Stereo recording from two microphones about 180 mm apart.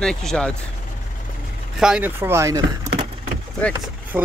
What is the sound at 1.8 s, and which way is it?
Speech, 5° right (ahead or behind).